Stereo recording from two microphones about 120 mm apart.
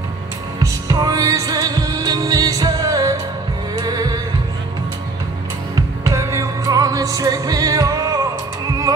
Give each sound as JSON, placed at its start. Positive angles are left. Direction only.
{"t": 0.6, "sound": "music", "side_deg": -30}
{"t": 5.8, "sound": "music", "side_deg": -30}